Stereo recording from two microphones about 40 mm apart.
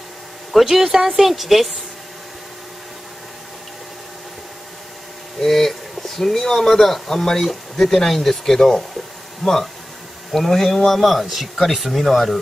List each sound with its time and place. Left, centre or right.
0.5 s speech: centre
5.4 s speech: centre
7.1 s speech: centre
7.3 s speech: centre